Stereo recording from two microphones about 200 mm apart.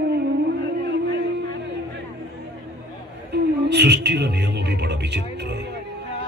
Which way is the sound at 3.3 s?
55° right (ahead or behind).